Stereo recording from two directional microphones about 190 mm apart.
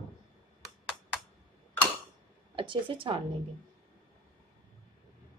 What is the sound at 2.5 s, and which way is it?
Speech, 25° right (ahead or behind).